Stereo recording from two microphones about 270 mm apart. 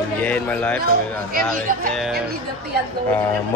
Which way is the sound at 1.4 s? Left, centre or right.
Right.